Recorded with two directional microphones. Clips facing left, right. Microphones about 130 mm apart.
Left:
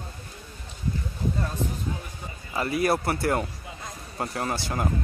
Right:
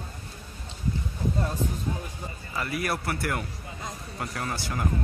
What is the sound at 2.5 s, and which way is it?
Speech, 25° left (ahead or behind).